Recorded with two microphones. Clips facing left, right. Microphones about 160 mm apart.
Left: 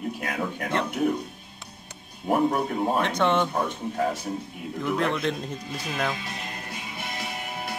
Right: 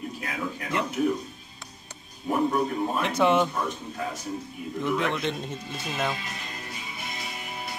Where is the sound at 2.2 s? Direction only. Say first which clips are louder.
Left 2 dB; 60° left (ahead or behind).